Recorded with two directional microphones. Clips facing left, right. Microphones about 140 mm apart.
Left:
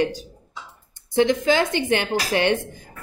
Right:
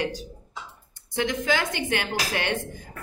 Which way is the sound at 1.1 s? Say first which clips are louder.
Left 7 dB; 30° left (ahead or behind).